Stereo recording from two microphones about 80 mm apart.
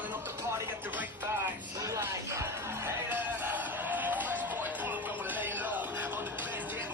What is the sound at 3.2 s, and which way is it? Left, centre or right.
Music, right.